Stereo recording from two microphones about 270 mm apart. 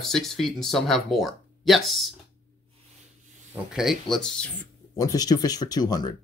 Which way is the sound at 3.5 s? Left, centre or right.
Centre.